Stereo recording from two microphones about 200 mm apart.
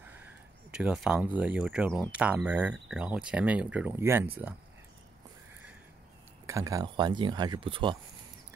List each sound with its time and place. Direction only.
0.0 s a sound: 10° right (ahead or behind)
0.7 s speech: 5° right (ahead or behind)
6.4 s speech: 15° right (ahead or behind)